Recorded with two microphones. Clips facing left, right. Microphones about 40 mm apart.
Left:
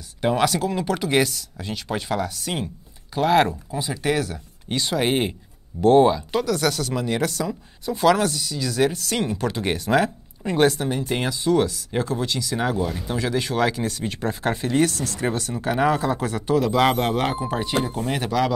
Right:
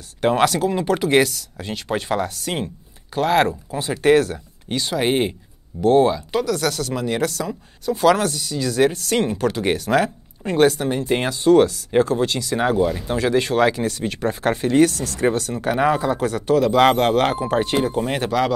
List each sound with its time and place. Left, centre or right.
0.2 s speech: right
3.2 s speech: centre
3.7 s speech: right
4.8 s speech: centre
9.4 s speech: right
11.4 s speech: right
12.5 s speech: right
12.8 s speech: centre
13.1 s speech: right
15.6 s speech: right
16.3 s speech: right